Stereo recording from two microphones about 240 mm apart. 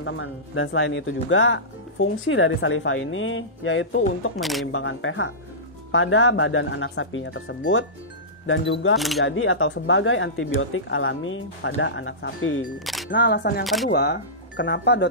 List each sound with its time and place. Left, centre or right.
0.0 s speech: left
4.4 s speech: centre
4.7 s speech: left
8.9 s speech: centre
9.2 s speech: left
12.7 s speech: centre
13.1 s speech: left